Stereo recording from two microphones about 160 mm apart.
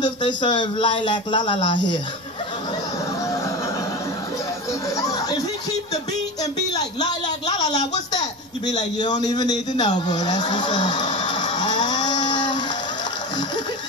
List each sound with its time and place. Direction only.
0.0 s speech: 30° left (ahead or behind)
4.9 s speech: 20° left (ahead or behind)
6.7 s a sound: 25° left (ahead or behind)